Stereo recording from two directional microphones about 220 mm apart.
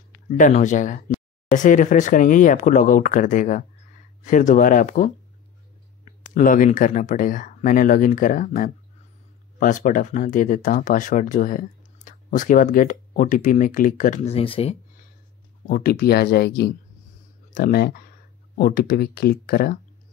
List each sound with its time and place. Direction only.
0.3 s speech: 35° left (ahead or behind)
15.6 s speech: 45° left (ahead or behind)